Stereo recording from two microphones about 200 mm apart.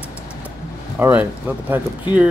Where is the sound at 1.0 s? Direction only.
10° right (ahead or behind).